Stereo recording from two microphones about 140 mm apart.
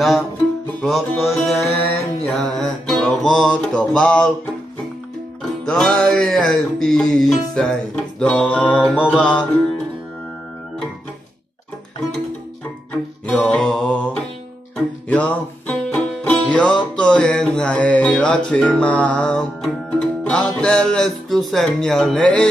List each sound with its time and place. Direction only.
0.7 s music: centre (ahead or behind)
1.7 s music: 45° left (ahead or behind)
2.2 s music: 5° left (ahead or behind)
5.4 s music: 5° left (ahead or behind)
13.3 s mantra: 10° left (ahead or behind)
15.0 s music: 10° left (ahead or behind)